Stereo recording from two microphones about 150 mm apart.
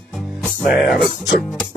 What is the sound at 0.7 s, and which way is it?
Music, 5° right (ahead or behind).